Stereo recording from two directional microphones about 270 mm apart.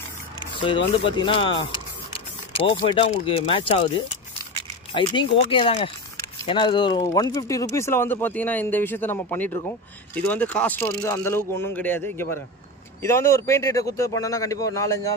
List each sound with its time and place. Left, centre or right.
0.6 s speech: centre
5.4 s speech: centre